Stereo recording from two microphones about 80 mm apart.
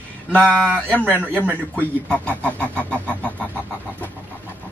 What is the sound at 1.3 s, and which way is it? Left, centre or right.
Speech, right.